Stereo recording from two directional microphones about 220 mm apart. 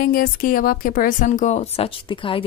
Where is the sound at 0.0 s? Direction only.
40° left (ahead or behind).